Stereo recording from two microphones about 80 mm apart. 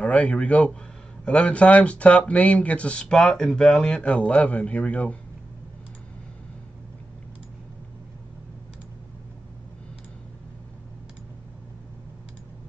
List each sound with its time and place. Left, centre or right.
0.0 s speech: centre